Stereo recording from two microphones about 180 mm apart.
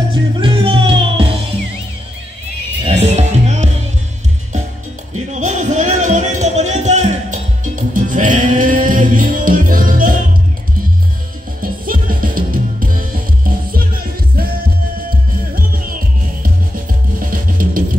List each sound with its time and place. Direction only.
0.1 s music: 30° right (ahead or behind)
2.8 s music: 35° right (ahead or behind)
5.3 s music: 45° right (ahead or behind)
11.6 s music: 50° right (ahead or behind)
15.0 s music: 55° right (ahead or behind)
17.2 s music: 50° right (ahead or behind)